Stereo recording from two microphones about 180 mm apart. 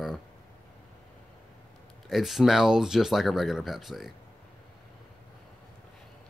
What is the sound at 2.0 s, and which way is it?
Speech, centre (ahead or behind).